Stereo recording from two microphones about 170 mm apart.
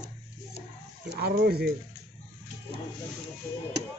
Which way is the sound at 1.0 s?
70° right (ahead or behind).